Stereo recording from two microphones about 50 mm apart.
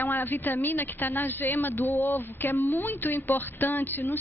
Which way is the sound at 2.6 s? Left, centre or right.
Left.